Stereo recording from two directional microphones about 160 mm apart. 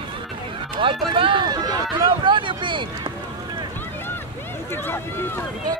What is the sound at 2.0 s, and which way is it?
Speech, 30° right (ahead or behind).